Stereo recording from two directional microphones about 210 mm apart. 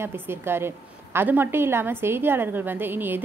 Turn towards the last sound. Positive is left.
turn(degrees=-10)  # may be behind; listen again after turning